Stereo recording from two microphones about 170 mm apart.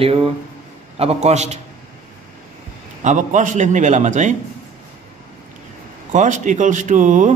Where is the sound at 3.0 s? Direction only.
45° right (ahead or behind).